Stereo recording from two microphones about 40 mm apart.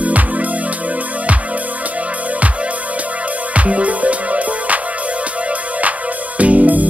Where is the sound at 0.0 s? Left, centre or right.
Right.